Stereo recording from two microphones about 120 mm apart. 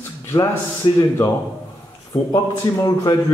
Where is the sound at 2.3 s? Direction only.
30° left (ahead or behind).